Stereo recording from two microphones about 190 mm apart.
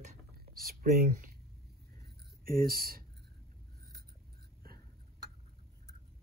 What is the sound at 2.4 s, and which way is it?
Speech, 50° right (ahead or behind).